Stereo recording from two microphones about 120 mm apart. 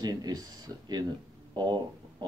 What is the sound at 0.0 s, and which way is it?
Speech, 35° right (ahead or behind).